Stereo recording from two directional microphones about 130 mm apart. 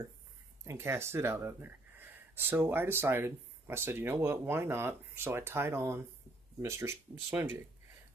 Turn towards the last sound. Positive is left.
turn(degrees=-20)  # may be behind; listen again after turning